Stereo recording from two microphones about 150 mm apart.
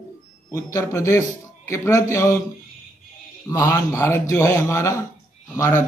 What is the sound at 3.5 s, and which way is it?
A man's voice, 20° left (ahead or behind).